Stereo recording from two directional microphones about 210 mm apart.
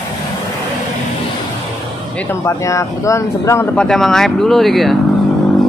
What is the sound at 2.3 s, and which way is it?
Speech, 15° left (ahead or behind).